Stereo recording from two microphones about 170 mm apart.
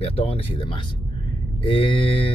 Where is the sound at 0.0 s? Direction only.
35° left (ahead or behind).